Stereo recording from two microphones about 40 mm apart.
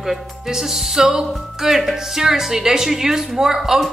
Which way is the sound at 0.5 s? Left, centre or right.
Centre.